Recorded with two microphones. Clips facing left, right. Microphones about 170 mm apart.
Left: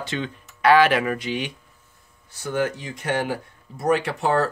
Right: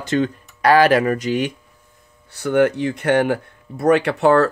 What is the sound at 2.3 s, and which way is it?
Speech, 65° right (ahead or behind).